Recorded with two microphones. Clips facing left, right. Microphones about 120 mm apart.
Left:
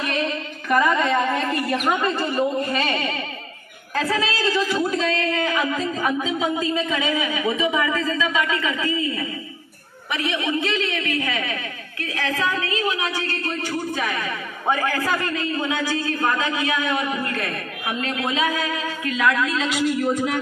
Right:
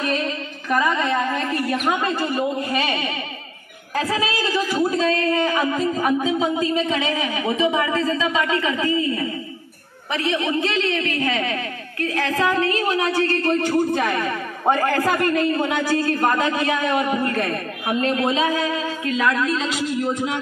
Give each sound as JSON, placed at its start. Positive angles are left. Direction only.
{"t": 0.7, "sound": "a woman's voice", "side_deg": -5}